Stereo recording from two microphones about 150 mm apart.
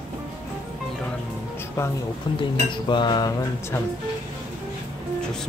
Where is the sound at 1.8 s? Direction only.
15° left (ahead or behind).